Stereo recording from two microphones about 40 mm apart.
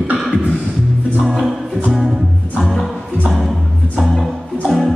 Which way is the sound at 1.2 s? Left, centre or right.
Centre.